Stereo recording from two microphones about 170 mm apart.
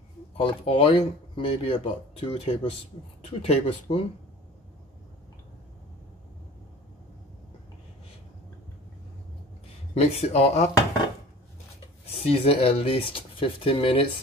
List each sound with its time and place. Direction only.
0.4 s speech: 35° left (ahead or behind)
9.9 s speech: 40° left (ahead or behind)
12.2 s speech: 35° left (ahead or behind)